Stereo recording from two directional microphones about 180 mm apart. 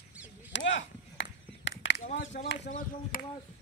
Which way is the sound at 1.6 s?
90° left.